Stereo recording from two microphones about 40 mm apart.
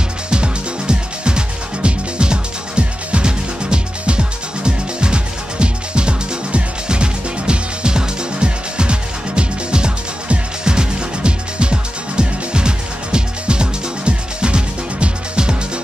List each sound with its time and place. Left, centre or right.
0.3 s music: right